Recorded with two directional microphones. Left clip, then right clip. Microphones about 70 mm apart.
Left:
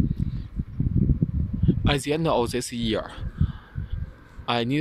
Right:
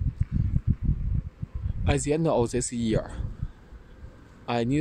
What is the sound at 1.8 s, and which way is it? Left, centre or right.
Speech, centre.